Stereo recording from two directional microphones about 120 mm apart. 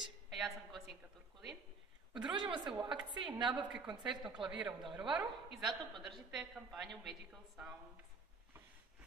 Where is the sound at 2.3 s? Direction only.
40° right (ahead or behind).